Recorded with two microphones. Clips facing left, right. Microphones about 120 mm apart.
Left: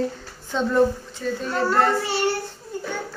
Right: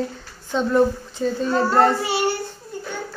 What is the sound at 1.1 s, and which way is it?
Speech, 20° right (ahead or behind).